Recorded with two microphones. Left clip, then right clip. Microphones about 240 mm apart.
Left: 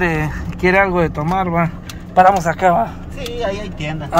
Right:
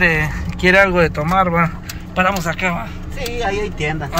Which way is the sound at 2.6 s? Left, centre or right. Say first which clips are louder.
Left 11 dB; left.